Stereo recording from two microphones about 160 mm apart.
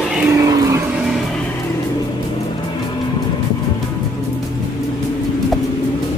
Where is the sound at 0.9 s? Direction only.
Centre (ahead or behind).